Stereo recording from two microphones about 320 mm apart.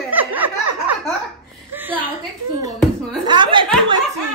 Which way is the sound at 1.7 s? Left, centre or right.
Centre.